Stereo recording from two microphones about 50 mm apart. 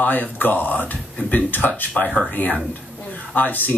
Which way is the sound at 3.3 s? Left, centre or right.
Left.